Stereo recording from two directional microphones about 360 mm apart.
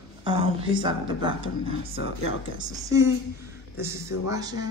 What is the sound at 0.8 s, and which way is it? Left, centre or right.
A woman's voice, centre.